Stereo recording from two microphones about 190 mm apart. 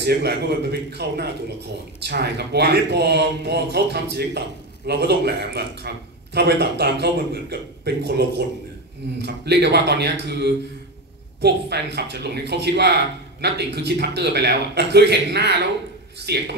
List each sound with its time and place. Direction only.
0.0 s speech: 60° right (ahead or behind)